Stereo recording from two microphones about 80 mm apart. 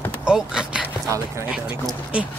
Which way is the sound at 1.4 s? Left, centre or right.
Centre.